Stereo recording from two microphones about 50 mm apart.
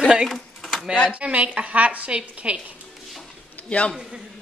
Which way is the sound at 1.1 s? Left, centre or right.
Right.